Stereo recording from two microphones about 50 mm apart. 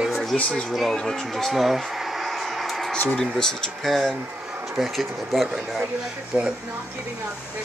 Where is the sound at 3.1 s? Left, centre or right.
Centre.